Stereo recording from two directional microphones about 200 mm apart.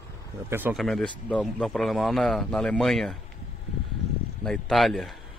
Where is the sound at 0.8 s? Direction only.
5° left (ahead or behind).